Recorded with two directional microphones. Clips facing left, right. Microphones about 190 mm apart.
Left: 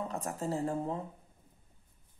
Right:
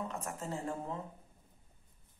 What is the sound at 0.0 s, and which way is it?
Speech, 35° left (ahead or behind).